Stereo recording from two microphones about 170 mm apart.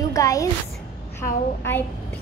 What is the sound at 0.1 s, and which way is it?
Music, 20° left (ahead or behind).